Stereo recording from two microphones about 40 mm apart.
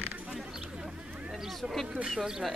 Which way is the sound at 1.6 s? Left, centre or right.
Centre.